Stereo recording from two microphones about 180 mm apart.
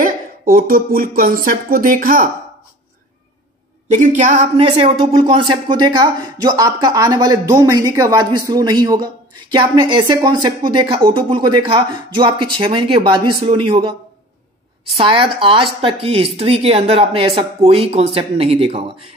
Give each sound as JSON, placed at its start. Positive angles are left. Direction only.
{"t": 0.0, "sound": "speech", "side_deg": -50}
{"t": 3.9, "sound": "a woman's voice", "side_deg": -45}
{"t": 4.6, "sound": "speech", "side_deg": -30}
{"t": 15.0, "sound": "speech", "side_deg": -30}